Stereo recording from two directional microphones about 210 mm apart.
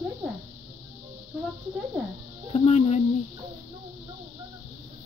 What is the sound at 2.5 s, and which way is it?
Music, 30° left (ahead or behind).